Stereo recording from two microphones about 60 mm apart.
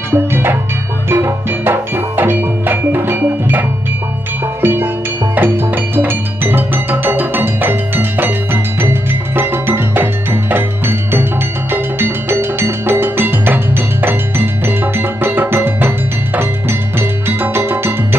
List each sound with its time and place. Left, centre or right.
0.1 s music: right
15.0 s music: right
17.3 s music: right